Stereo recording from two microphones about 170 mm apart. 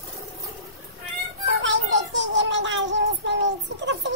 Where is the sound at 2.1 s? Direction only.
90° right.